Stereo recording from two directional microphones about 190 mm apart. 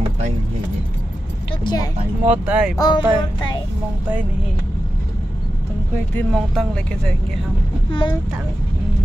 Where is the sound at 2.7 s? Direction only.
20° left (ahead or behind).